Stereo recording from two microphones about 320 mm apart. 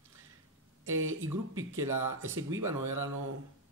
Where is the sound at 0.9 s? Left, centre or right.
Right.